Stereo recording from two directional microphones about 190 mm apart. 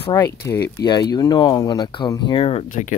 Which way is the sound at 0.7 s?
20° left (ahead or behind).